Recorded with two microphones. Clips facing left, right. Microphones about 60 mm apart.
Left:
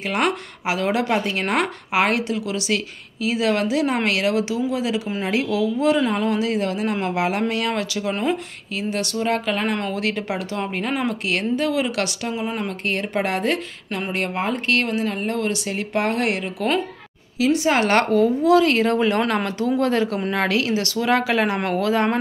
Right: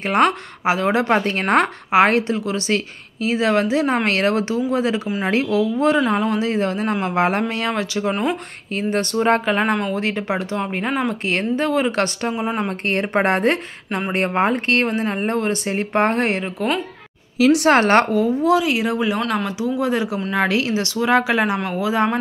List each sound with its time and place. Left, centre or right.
0.7 s a woman's voice: right
8.7 s a woman's voice: right; by 11.1 s centre
11.2 s speech: right
12.8 s a woman's voice: right
17.6 s a woman's voice: right
18.6 s speech: centre
19.1 s speech: centre
19.8 s speech: centre